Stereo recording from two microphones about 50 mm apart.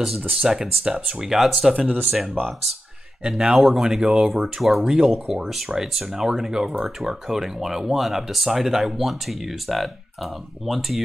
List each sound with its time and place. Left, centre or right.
0.4 s speech: centre
1.9 s speech: right
3.3 s speech: centre